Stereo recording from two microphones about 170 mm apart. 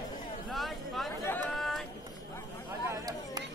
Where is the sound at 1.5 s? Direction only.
Centre (ahead or behind).